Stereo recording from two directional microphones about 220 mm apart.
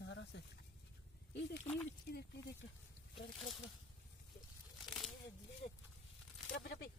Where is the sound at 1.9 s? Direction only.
45° left (ahead or behind).